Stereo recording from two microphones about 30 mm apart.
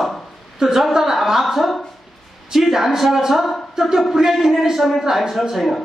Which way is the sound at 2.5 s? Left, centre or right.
Centre.